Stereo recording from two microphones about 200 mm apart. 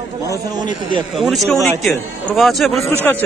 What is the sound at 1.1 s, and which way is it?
Speech, centre (ahead or behind).